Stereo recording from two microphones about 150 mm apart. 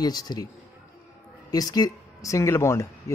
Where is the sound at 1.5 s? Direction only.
25° left (ahead or behind).